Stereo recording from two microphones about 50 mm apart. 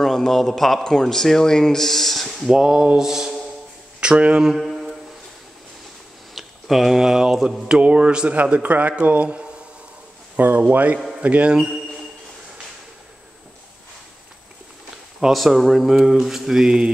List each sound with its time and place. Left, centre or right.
0.0 s a man's voice: centre
2.5 s mantra: centre
3.0 s speech: centre
4.0 s speech: centre
6.3 s speech: centre
7.8 s a man's voice: right
15.1 s speech: centre
15.9 s mantra: centre